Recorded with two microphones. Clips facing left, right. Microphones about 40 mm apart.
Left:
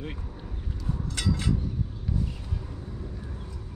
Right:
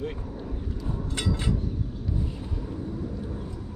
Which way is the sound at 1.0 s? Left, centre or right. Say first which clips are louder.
Even; right.